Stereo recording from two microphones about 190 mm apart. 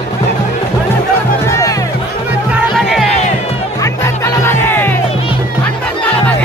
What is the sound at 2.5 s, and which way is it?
Music, centre (ahead or behind).